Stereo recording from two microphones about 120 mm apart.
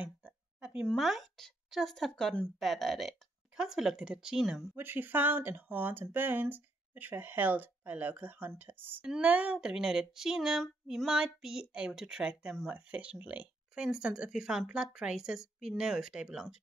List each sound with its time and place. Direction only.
0.0 s a sound: 10° right (ahead or behind)
0.8 s speech: centre (ahead or behind)
4.7 s speech: 15° right (ahead or behind)